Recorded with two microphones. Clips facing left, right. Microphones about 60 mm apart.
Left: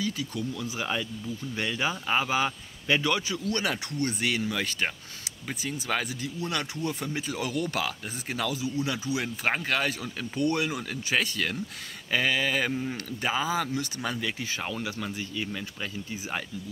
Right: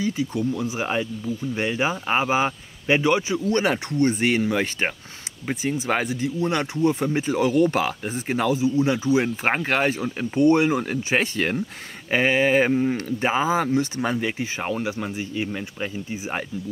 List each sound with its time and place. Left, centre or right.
0.0 s speech: right